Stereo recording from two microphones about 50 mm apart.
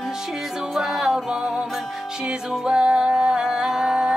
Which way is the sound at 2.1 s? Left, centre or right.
Centre.